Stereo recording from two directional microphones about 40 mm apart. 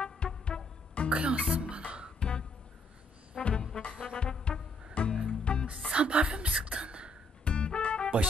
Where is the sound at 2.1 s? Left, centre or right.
Left.